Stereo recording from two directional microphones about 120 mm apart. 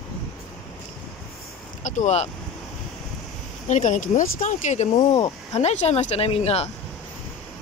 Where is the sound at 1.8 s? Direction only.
90° left.